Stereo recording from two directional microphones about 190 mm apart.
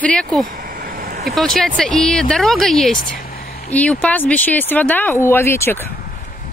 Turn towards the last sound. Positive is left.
turn(degrees=10)  # may be behind; listen again after turning